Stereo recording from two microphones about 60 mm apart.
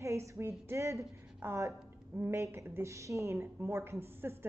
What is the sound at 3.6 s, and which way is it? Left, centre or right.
Speech, right.